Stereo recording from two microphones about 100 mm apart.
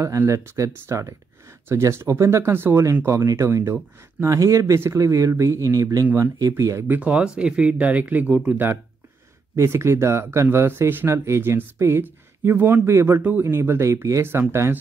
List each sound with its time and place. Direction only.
0.0 s speech: 30° right (ahead or behind)
6.0 s speech: 20° right (ahead or behind)
6.3 s speech: 30° right (ahead or behind)
6.9 s speech: 10° right (ahead or behind)
9.6 s speech: 30° right (ahead or behind)